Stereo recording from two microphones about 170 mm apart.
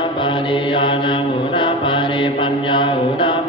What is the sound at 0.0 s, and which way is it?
Mantra, 30° left (ahead or behind).